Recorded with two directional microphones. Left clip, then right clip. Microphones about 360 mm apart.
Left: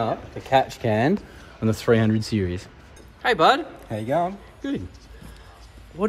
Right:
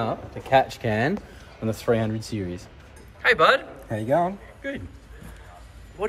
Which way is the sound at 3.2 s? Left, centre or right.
Centre.